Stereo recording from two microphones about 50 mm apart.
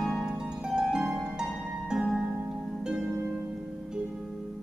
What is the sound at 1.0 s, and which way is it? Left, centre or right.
Harp, right.